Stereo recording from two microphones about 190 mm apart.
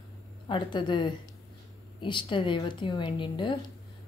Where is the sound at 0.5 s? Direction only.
25° left (ahead or behind).